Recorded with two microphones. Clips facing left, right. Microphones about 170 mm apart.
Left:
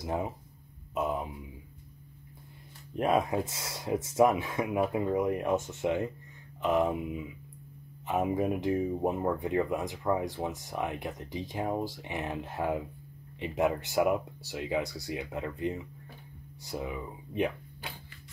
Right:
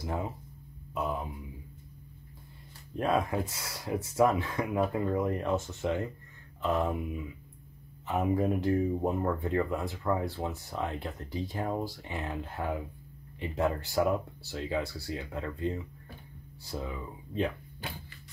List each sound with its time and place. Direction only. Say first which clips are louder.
0.0 s speech: left 2 dB; 20° left (ahead or behind)
2.9 s speech: left 2 dB; 20° left (ahead or behind)